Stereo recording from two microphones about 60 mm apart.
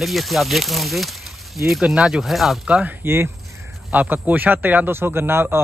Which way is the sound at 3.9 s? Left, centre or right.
Right.